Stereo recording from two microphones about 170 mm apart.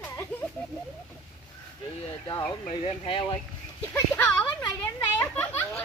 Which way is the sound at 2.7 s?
30° left (ahead or behind).